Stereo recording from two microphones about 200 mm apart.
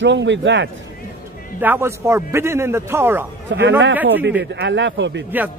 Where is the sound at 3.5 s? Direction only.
65° right (ahead or behind).